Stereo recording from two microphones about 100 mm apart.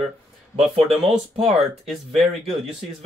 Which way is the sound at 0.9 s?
Centre (ahead or behind).